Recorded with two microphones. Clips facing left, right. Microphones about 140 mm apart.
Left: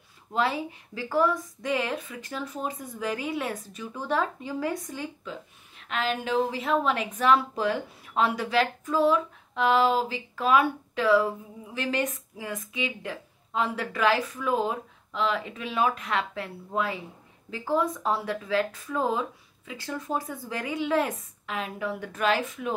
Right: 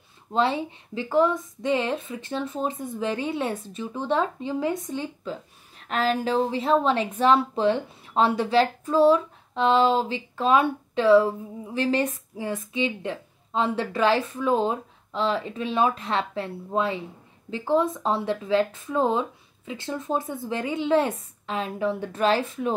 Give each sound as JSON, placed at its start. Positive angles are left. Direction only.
{"t": 0.3, "sound": "speech", "side_deg": -25}